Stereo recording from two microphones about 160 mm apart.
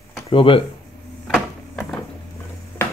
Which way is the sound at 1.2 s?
5° left (ahead or behind).